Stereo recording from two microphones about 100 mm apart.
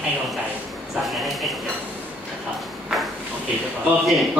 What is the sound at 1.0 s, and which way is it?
Speech, centre (ahead or behind).